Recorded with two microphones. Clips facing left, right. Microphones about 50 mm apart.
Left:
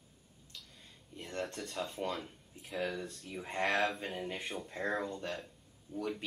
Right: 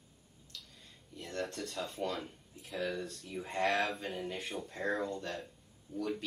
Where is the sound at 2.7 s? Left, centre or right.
Centre.